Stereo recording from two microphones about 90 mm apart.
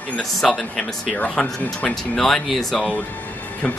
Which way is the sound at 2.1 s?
5° left (ahead or behind).